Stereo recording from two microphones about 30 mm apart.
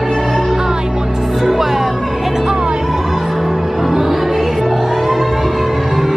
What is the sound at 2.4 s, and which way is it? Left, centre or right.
Music, right.